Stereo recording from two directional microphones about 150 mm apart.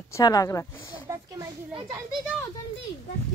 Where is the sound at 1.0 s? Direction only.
20° right (ahead or behind).